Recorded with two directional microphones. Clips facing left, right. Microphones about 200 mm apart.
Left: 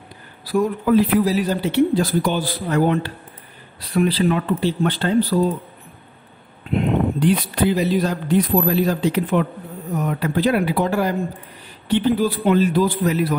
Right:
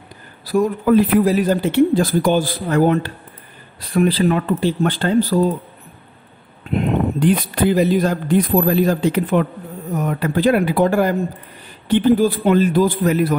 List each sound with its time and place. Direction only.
0.4 s a man's voice: 45° right (ahead or behind)
7.2 s a man's voice: 50° right (ahead or behind)